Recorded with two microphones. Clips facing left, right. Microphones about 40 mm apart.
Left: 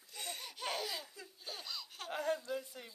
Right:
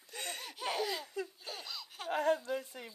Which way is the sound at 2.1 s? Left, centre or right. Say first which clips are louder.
Right 6 dB; right.